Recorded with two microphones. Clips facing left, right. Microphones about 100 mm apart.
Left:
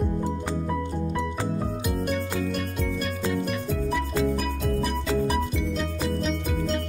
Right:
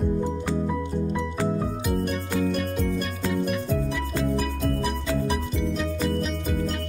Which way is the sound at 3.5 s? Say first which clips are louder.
Right 1 dB; centre (ahead or behind).